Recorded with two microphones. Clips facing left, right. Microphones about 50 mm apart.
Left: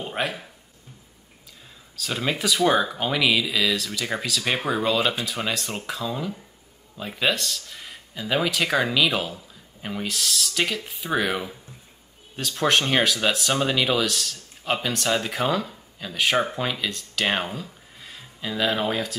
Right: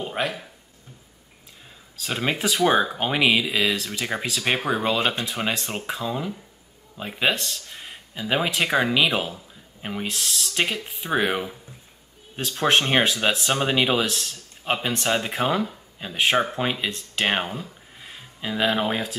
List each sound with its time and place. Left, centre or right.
0.0 s speech: centre
2.0 s speech: right
4.6 s speech: centre
7.0 s a sound: centre
8.2 s speech: centre
17.9 s a sound: centre